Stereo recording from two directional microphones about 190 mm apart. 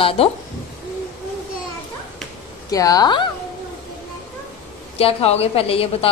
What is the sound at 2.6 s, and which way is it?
Speech, 20° left (ahead or behind).